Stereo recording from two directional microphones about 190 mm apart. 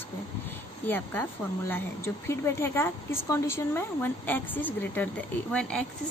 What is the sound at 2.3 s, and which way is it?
A woman's voice, 15° left (ahead or behind).